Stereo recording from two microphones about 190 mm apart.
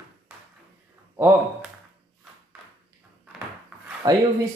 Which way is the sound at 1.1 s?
10° right (ahead or behind).